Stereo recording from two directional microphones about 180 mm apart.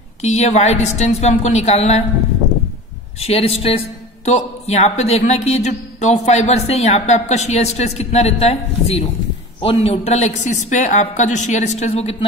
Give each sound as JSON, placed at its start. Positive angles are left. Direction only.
{"t": 0.2, "sound": "a man's voice", "side_deg": 40}
{"t": 3.2, "sound": "a man's voice", "side_deg": 35}